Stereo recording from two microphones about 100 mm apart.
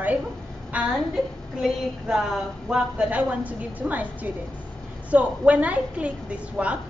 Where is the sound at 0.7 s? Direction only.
15° right (ahead or behind).